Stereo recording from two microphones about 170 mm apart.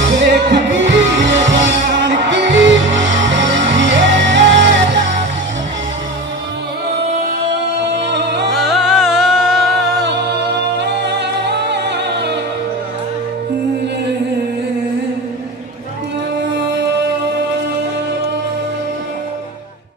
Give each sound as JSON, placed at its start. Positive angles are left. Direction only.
{"t": 0.2, "sound": "music", "side_deg": -90}
{"t": 7.9, "sound": "music", "side_deg": -90}
{"t": 8.5, "sound": "music", "side_deg": 0}
{"t": 10.0, "sound": "music", "side_deg": -90}